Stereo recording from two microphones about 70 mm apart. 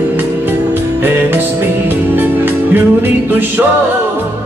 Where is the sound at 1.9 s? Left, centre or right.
Right.